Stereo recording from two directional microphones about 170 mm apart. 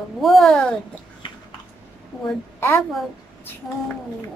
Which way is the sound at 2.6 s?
15° left (ahead or behind).